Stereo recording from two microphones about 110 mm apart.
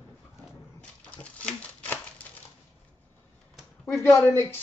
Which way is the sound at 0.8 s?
10° left (ahead or behind).